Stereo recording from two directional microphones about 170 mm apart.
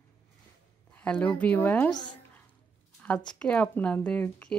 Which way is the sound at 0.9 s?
5° left (ahead or behind).